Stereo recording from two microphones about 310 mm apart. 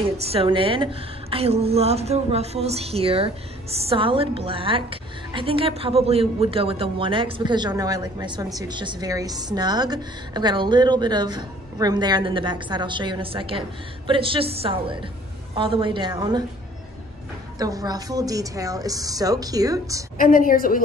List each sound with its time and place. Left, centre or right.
0.2 s a woman's voice: centre
17.6 s speech: centre
20.2 s a woman's voice: left